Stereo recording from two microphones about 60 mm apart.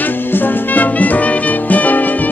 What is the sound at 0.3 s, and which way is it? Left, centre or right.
Music, left.